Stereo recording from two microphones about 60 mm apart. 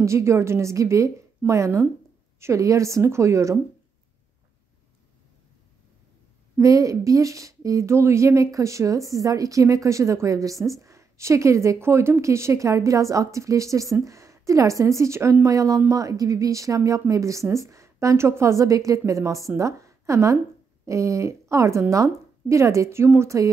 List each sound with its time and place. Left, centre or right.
0.0 s speech: right
6.6 s speech: right
15.4 s a woman's voice: right